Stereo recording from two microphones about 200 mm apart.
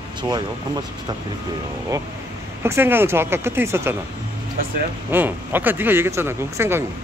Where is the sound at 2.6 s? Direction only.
10° right (ahead or behind).